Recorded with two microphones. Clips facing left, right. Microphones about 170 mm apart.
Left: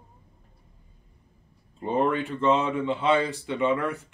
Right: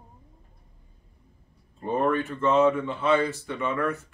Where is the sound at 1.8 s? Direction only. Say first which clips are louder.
Even; 20° left (ahead or behind).